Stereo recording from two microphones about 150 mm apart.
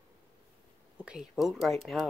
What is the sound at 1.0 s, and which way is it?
Speech, 5° right (ahead or behind).